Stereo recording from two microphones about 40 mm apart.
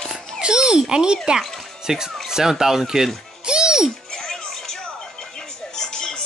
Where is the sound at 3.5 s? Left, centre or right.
Centre.